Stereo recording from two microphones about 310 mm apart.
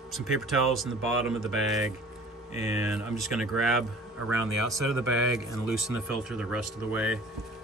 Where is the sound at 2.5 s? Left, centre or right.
Left.